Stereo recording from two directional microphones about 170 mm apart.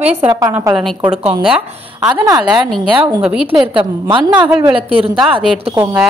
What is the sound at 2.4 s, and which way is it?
Speech, 5° right (ahead or behind).